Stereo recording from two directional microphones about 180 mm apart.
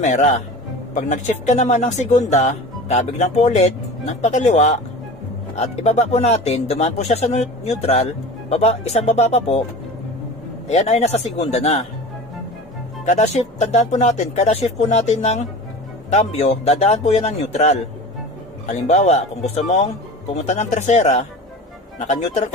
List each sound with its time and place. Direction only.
0.0 s speech: 40° left (ahead or behind)
10.7 s speech: 40° left (ahead or behind)
13.0 s speech: 40° left (ahead or behind)